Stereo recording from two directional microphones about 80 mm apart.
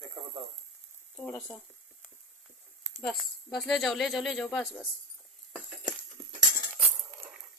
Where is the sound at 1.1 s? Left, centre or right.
Centre.